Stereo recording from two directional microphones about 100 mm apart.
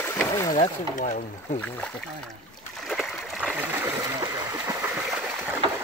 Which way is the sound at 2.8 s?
Centre (ahead or behind).